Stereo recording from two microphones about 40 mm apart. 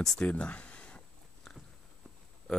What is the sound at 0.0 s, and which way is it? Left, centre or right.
Speech, centre.